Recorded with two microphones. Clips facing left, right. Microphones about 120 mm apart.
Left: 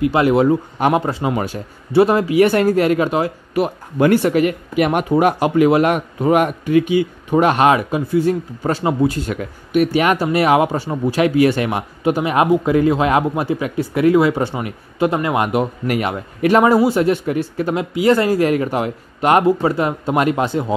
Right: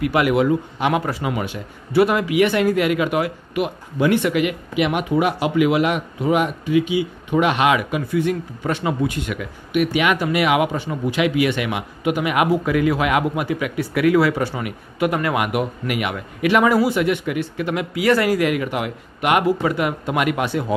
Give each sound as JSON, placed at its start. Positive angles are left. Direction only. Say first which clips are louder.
{"t": 0.0, "sound": "speech", "louder": "left 4 dB", "side_deg": 30}